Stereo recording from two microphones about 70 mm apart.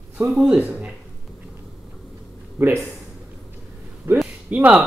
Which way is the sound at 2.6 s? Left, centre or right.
Right.